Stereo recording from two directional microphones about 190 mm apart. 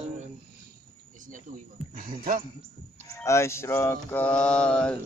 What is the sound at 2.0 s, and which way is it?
Speech, 45° right (ahead or behind).